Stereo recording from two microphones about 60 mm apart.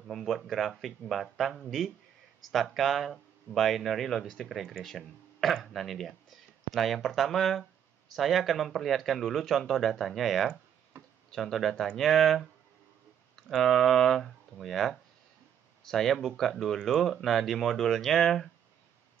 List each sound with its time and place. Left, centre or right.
0.1 s speech: centre
10.9 s tick-tock: right
11.3 s speech: centre